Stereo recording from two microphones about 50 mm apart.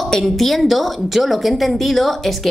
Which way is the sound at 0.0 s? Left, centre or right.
Centre.